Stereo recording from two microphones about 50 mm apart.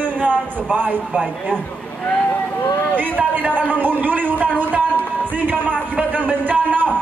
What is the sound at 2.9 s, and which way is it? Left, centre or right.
A man's voice, right.